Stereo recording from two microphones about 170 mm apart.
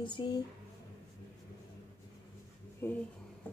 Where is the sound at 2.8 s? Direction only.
15° left (ahead or behind).